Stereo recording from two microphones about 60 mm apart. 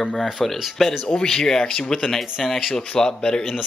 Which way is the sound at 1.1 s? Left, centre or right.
Centre.